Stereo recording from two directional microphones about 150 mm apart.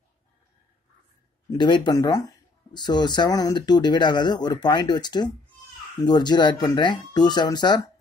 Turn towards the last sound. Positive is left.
turn(degrees=30)  # may be behind; listen again after turning